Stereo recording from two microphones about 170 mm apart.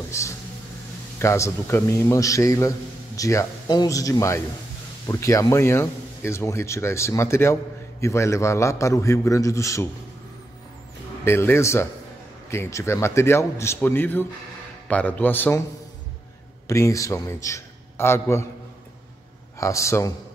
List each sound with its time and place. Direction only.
0.1 s speech: 15° left (ahead or behind)
11.2 s speech: 15° left (ahead or behind)
16.6 s a man's voice: 20° left (ahead or behind)
19.6 s speech: 15° left (ahead or behind)